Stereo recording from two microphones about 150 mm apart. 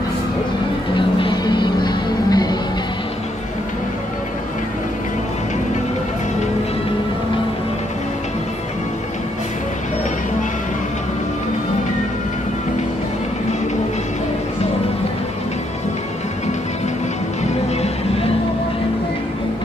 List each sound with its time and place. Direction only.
0.9 s music: 30° left (ahead or behind)
17.4 s music: 45° left (ahead or behind)